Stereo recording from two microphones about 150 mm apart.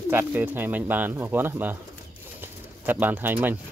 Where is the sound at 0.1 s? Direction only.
10° right (ahead or behind).